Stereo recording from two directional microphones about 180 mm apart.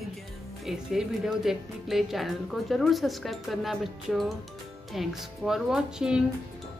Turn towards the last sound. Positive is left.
turn(degrees=-5)  # may be behind; listen again after turning